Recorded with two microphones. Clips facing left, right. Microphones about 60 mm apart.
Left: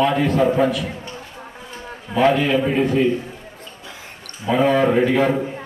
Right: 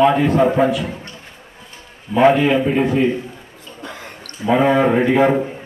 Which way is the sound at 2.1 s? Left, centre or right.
Left.